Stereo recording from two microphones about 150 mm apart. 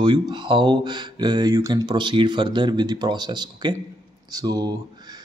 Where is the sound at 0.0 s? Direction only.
30° right (ahead or behind).